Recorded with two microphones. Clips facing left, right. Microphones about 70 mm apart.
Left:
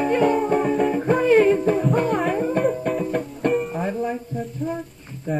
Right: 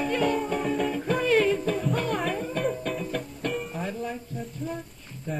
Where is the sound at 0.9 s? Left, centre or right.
Left.